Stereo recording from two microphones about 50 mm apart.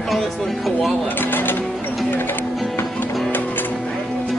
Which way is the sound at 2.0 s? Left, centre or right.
Left.